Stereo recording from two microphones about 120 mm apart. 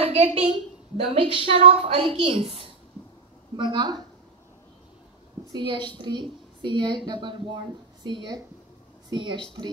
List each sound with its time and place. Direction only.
0.0 s a woman's voice: 55° right (ahead or behind)
3.5 s a woman's voice: 40° right (ahead or behind)
5.5 s a woman's voice: 40° right (ahead or behind)